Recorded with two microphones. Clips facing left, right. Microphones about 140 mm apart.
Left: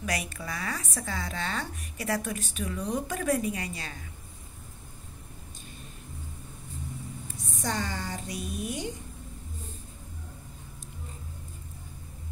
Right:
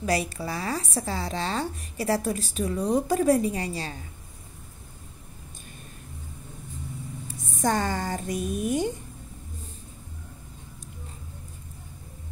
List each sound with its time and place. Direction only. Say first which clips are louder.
0.0 s a woman's voice: right 7 dB; 30° right (ahead or behind)
7.5 s a woman's voice: right 7 dB; 50° right (ahead or behind)